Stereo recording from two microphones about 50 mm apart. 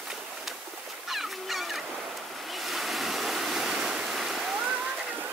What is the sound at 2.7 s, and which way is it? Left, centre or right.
Waves, centre.